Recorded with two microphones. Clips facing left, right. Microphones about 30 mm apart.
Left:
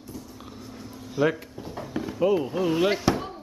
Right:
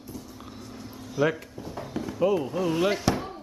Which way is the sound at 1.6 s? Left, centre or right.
Centre.